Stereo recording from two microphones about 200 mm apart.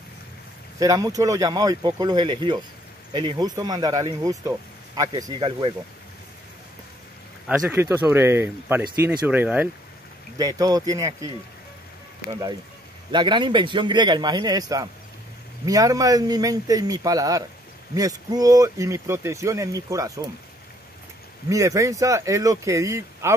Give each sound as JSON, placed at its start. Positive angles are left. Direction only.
{"t": 0.7, "sound": "speech", "side_deg": -15}
{"t": 7.7, "sound": "speech", "side_deg": -10}
{"t": 12.3, "sound": "speech", "side_deg": -20}
{"t": 21.5, "sound": "speech", "side_deg": -15}